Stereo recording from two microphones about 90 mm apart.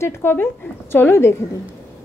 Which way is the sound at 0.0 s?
25° left (ahead or behind).